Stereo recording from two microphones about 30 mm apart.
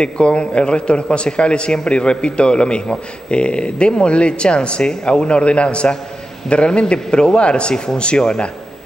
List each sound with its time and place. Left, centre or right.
0.0 s a man's voice: left